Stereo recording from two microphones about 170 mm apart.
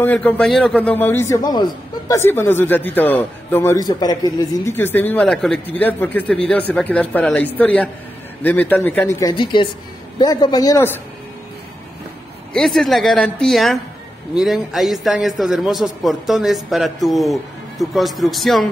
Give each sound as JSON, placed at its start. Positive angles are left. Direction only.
{"t": 0.0, "sound": "a man's voice", "side_deg": 10}
{"t": 9.3, "sound": "a man's voice", "side_deg": 30}
{"t": 12.5, "sound": "a man's voice", "side_deg": 5}